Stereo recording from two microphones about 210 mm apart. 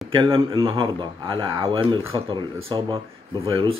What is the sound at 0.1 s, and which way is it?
Speech, 25° right (ahead or behind).